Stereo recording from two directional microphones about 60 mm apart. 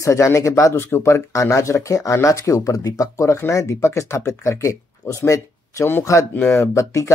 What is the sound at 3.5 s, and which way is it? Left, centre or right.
Speech, left.